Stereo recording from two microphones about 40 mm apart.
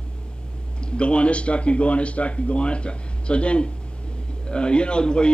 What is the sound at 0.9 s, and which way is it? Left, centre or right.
Speech, left.